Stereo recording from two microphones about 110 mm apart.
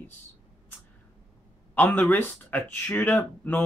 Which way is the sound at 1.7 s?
15° left (ahead or behind).